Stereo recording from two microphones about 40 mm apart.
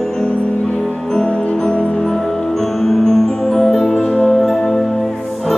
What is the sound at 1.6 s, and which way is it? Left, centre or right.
Music, centre.